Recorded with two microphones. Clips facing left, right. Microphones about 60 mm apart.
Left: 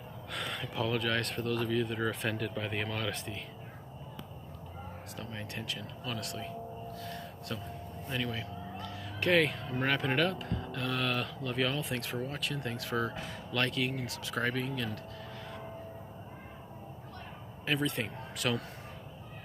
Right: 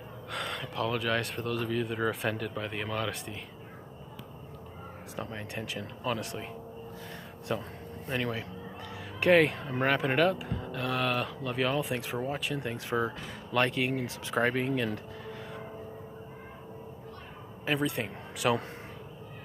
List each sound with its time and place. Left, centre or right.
0.3 s speech: centre
5.1 s speech: right
7.1 s a sound: right
9.2 s speech: centre
9.8 s speech: centre
17.6 s speech: centre